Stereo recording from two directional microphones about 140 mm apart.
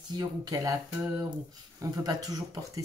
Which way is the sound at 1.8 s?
25° right (ahead or behind).